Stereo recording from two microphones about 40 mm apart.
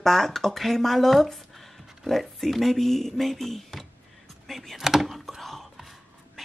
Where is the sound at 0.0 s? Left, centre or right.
Centre.